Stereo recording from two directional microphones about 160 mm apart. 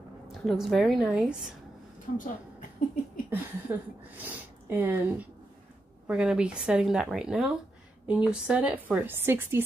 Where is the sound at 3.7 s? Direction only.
15° right (ahead or behind).